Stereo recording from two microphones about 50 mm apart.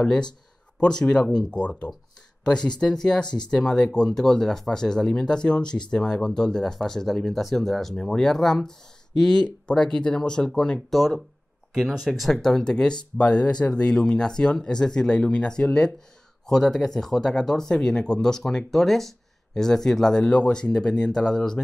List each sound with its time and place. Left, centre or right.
0.0 s speech: centre
10.9 s speech: centre
12.1 s speech: centre